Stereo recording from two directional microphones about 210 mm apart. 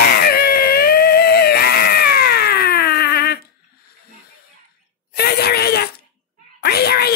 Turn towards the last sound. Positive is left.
turn(degrees=50)  # may be behind; listen again after turning